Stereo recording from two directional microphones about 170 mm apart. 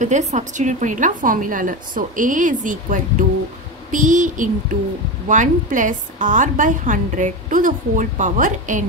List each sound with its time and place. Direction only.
0.0 s a woman's voice: 45° right (ahead or behind)